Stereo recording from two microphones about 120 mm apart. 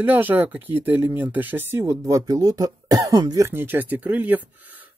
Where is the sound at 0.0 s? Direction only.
15° right (ahead or behind).